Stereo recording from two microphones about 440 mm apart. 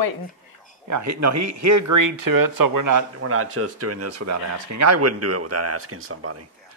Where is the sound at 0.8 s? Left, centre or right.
Right.